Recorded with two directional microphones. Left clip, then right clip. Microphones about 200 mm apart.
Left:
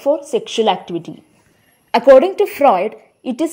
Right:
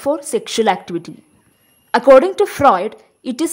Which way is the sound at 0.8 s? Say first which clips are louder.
Even; 50° right (ahead or behind).